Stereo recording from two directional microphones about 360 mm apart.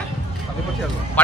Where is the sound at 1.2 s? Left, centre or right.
Centre.